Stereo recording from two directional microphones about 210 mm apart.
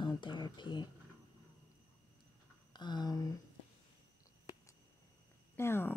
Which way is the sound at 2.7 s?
20° left (ahead or behind).